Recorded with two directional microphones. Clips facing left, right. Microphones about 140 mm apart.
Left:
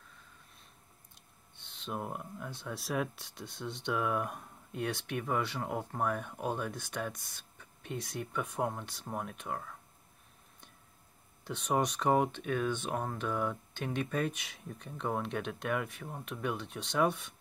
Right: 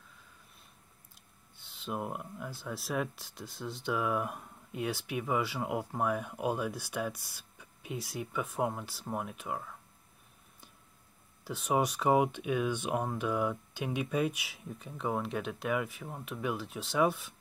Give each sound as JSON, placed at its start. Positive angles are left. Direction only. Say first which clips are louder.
{"t": 1.6, "sound": "speech", "louder": "right 2 dB", "side_deg": -5}
{"t": 11.4, "sound": "speech", "louder": "right 1 dB", "side_deg": -5}